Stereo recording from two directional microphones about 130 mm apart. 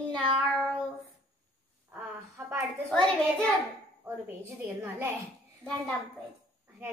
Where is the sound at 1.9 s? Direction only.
15° right (ahead or behind).